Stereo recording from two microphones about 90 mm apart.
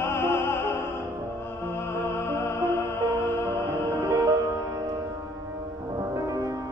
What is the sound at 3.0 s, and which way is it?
Music, 30° right (ahead or behind).